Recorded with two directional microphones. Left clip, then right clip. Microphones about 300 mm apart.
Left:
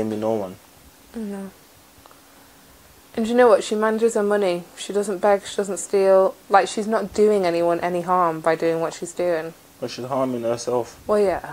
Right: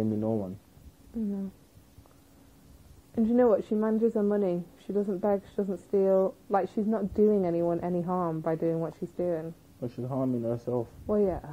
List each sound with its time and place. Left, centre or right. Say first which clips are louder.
0.0 s speech: left 8 dB; centre
3.2 s a woman's voice: left 9 dB; centre